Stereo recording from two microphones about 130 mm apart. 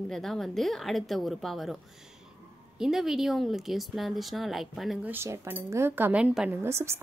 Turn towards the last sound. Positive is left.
turn(degrees=-20)  # may be behind; listen again after turning